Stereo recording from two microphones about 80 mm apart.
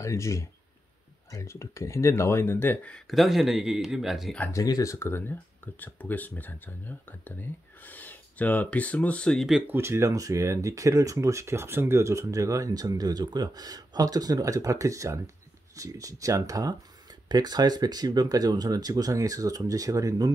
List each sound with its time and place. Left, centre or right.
0.0 s speech: left
3.1 s speech: centre
4.5 s speech: left
4.9 s speech: left; by 9.4 s centre
9.4 s speech: centre
9.7 s speech: right